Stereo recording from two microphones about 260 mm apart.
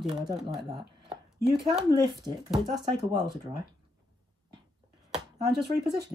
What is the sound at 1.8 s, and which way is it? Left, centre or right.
Speech, centre.